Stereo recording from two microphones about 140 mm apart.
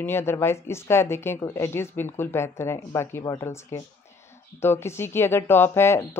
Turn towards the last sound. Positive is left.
turn(degrees=20)  # may be behind; listen again after turning